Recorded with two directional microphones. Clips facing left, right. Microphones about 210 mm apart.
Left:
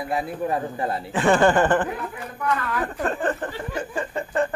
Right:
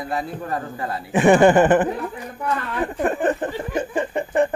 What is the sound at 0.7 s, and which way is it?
Speech, 25° left (ahead or behind).